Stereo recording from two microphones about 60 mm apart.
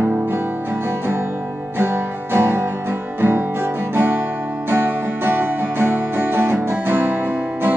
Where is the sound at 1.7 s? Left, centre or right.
Right.